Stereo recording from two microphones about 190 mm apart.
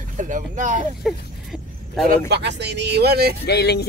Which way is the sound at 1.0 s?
Centre (ahead or behind).